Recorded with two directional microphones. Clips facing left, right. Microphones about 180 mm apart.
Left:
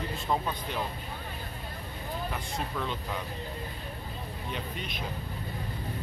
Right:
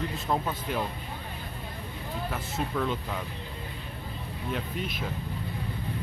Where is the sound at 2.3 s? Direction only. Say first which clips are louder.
Right 3 dB; 5° right (ahead or behind).